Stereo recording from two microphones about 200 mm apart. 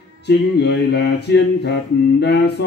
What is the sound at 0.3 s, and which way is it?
Music, 55° left (ahead or behind).